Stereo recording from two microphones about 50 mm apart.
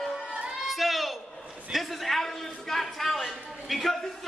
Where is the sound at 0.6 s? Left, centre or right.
Centre.